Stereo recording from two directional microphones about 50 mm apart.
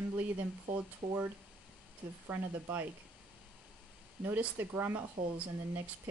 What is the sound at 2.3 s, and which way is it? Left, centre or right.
Speech, right.